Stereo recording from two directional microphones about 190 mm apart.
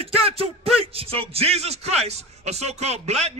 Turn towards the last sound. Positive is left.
turn(degrees=-35)  # may be behind; listen again after turning